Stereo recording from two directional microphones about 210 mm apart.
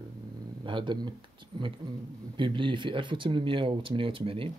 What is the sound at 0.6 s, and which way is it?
Speech, 25° right (ahead or behind).